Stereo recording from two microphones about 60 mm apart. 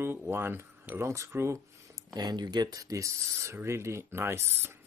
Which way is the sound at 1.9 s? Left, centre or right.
Right.